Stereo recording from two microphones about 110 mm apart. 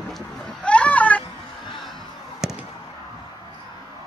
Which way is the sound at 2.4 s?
5° right (ahead or behind).